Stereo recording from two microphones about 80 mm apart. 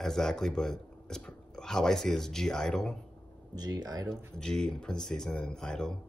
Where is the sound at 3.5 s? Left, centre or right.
Right.